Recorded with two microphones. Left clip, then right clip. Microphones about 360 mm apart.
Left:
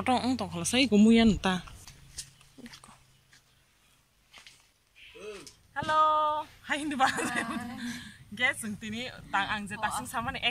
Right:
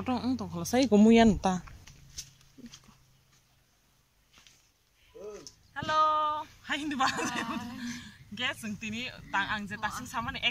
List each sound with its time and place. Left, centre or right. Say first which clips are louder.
0.0 s speech: left 5 dB; centre
1.0 s speech: right 2 dB; right
1.4 s speech: even; centre
5.7 s speech: left 2 dB; centre